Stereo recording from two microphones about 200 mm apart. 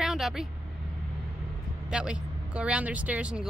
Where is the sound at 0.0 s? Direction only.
Centre (ahead or behind).